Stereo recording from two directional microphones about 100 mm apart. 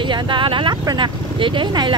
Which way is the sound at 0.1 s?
55° right (ahead or behind).